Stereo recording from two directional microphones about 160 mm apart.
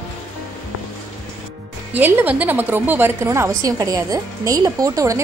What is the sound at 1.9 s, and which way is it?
A woman's voice, 10° right (ahead or behind).